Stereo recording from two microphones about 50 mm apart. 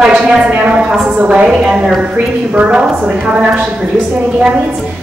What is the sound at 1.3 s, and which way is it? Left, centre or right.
Speech, right.